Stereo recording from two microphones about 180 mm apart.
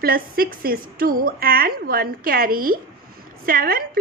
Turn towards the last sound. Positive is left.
turn(degrees=-55)  # may be behind; listen again after turning